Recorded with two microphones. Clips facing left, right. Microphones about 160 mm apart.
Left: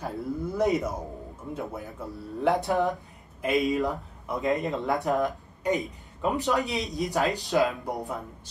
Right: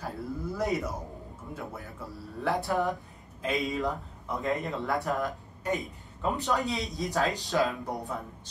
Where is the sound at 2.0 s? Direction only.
20° left (ahead or behind).